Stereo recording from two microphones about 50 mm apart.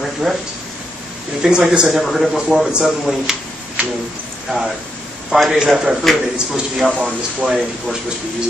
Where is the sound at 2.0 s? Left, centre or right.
Centre.